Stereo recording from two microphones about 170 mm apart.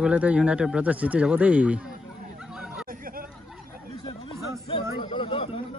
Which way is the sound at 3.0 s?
60° right (ahead or behind).